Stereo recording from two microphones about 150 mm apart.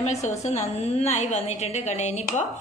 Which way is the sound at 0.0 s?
50° left (ahead or behind).